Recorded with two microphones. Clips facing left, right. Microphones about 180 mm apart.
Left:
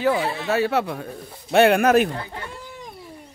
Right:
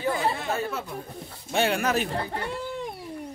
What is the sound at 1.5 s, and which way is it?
Speech, 60° left (ahead or behind).